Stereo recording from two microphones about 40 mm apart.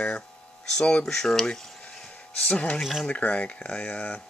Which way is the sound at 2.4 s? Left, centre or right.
Left.